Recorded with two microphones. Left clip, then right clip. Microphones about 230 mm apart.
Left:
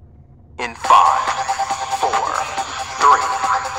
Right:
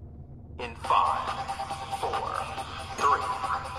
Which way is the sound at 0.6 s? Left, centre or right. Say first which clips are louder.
Left 13 dB; left.